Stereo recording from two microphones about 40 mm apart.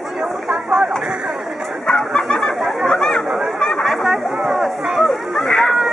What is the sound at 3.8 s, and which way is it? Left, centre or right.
Chatter, centre.